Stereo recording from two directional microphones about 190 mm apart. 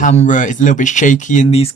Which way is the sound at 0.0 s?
40° left (ahead or behind).